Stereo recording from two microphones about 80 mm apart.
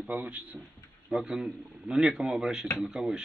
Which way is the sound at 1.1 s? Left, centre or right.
Centre.